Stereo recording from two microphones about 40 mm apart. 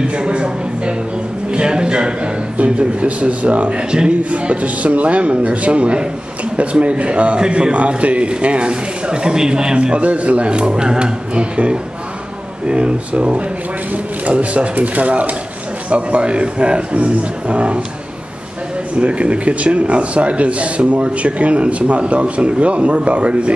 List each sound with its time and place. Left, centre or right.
0.1 s a man's voice: right
18.9 s a man's voice: right